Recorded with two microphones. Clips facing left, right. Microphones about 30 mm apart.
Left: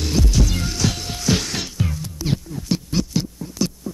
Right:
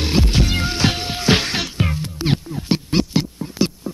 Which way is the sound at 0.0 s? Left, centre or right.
Right.